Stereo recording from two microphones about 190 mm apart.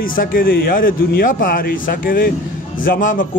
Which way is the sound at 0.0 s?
45° left (ahead or behind).